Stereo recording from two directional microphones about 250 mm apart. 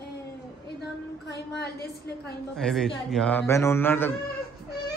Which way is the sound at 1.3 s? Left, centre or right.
Left.